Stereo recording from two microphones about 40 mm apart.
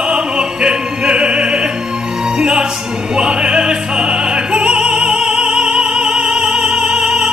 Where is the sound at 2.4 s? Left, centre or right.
Right.